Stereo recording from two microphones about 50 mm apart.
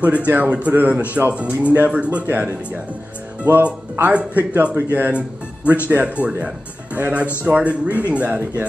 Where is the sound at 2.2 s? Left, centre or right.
Right.